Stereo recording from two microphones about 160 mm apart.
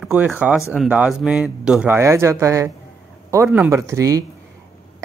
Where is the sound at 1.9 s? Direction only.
15° right (ahead or behind).